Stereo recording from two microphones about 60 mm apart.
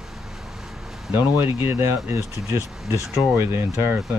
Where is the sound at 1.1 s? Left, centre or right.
Right.